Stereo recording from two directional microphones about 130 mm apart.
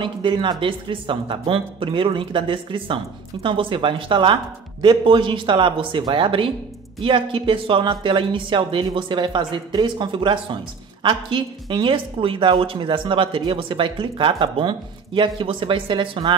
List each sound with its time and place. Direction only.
0.0 s speech: 40° right (ahead or behind)